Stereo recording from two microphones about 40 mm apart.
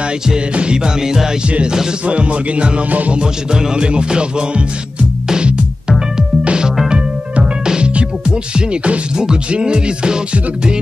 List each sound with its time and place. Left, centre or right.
0.6 s music: right
1.5 s music: right
2.9 s music: right
3.2 s music: centre